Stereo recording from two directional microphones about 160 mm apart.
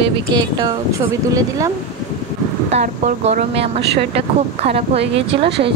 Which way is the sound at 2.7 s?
45° right (ahead or behind).